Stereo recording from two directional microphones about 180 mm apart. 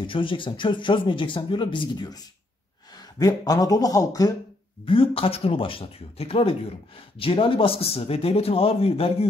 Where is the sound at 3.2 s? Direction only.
20° left (ahead or behind).